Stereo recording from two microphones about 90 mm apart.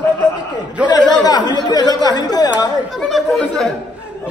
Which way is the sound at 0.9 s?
55° left (ahead or behind).